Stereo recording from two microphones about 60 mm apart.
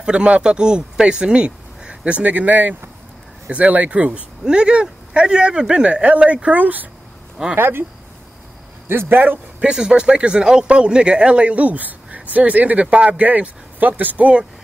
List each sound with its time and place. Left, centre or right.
0.0 s a man's voice: centre; by 7.8 s right
8.8 s speech: right
9.6 s speech: centre